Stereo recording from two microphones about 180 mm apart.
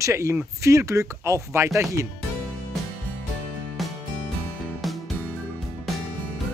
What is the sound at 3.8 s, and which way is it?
Music, centre (ahead or behind).